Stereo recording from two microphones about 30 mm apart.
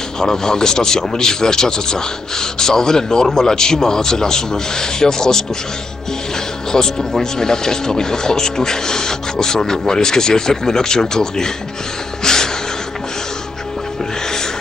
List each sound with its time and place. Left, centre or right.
0.2 s speech: centre
6.7 s speech: centre
12.2 s music: left